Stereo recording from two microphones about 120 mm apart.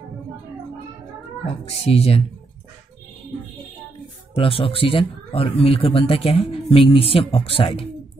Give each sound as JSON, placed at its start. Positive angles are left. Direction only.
{"t": 1.7, "sound": "speech", "side_deg": 55}
{"t": 4.3, "sound": "speech", "side_deg": 50}